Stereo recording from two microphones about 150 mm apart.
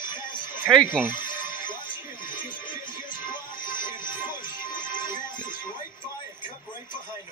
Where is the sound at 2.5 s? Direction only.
30° left (ahead or behind).